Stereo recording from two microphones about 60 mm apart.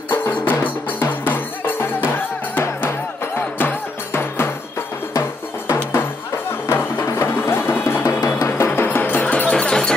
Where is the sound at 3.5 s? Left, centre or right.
Left.